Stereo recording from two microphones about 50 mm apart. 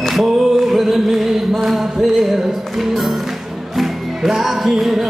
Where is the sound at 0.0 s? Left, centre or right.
Centre.